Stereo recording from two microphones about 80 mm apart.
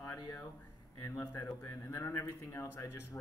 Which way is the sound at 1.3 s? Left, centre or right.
Left.